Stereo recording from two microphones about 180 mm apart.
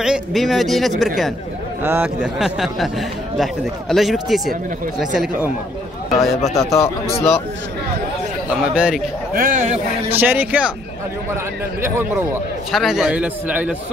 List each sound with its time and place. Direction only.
0.0 s speech: centre (ahead or behind)
1.8 s speech: 10° right (ahead or behind)
3.9 s speech: centre (ahead or behind)
6.5 s speech: 15° left (ahead or behind)
8.5 s a man's voice: 5° right (ahead or behind)
9.3 s a man's voice: 50° right (ahead or behind)
10.1 s a man's voice: 10° right (ahead or behind)
12.7 s a man's voice: centre (ahead or behind)